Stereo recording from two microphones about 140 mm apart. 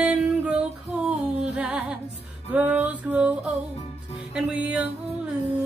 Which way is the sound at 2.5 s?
10° right (ahead or behind).